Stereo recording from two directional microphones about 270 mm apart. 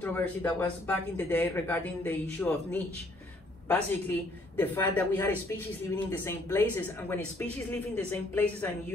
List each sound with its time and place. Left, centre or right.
0.0 s speech: centre